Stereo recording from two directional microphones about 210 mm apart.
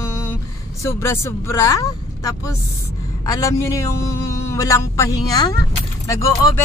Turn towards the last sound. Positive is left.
turn(degrees=15)  # may be behind; listen again after turning